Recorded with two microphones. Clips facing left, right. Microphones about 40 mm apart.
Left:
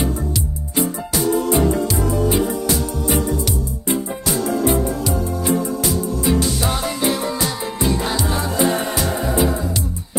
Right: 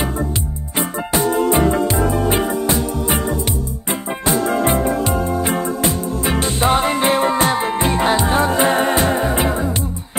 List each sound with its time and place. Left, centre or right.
0.7 s music: right
4.5 s music: right